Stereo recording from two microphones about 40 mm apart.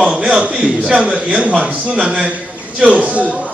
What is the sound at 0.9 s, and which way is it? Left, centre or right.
A man's voice, right.